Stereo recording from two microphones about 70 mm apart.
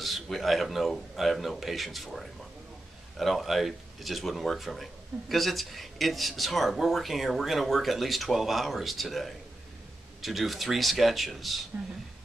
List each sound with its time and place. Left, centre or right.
0.0 s speech: centre